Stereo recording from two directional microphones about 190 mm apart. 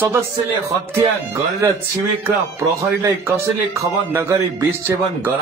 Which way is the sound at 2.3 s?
15° right (ahead or behind).